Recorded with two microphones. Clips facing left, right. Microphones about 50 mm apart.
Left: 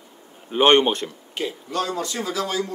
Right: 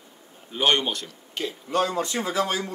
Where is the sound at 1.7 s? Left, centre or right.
Right.